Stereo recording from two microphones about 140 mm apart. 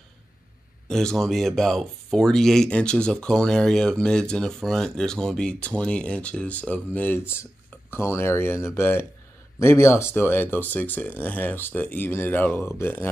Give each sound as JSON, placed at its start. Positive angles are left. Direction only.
{"t": 0.8, "sound": "speech", "side_deg": 5}